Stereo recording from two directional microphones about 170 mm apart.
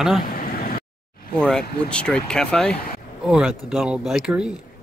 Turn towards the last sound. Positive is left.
turn(degrees=-5)  # may be behind; listen again after turning